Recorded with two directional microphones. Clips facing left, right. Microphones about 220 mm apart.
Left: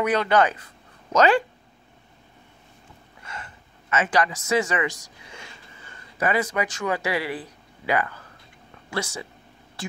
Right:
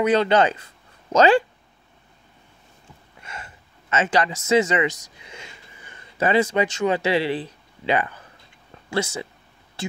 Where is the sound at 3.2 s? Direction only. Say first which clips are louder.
Even; 20° right (ahead or behind).